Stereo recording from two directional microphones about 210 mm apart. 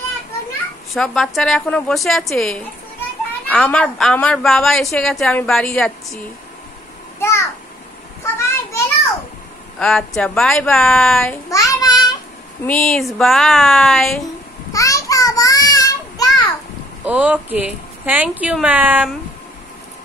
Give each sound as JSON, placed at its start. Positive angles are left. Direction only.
{"t": 0.9, "sound": "a woman's voice", "side_deg": 0}
{"t": 7.2, "sound": "a sound", "side_deg": 15}
{"t": 9.8, "sound": "a woman's voice", "side_deg": 5}
{"t": 11.5, "sound": "babbling", "side_deg": 15}
{"t": 12.6, "sound": "a woman's voice", "side_deg": 5}
{"t": 14.7, "sound": "child singing", "side_deg": 15}
{"t": 17.0, "sound": "a woman's voice", "side_deg": -5}